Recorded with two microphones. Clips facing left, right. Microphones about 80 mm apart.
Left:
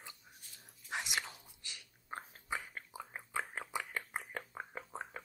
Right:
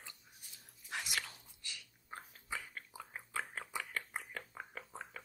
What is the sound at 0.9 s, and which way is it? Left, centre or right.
Biting, left.